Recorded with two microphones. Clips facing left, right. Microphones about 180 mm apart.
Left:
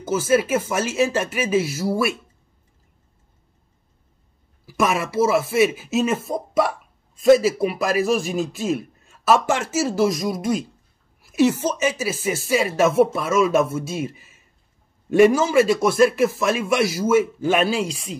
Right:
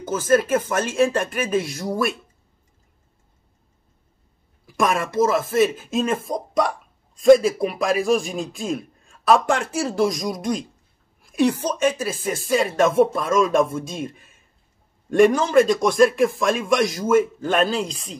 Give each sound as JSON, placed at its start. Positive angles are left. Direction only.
{"t": 0.0, "sound": "a man's voice", "side_deg": 5}
{"t": 4.6, "sound": "a man's voice", "side_deg": 5}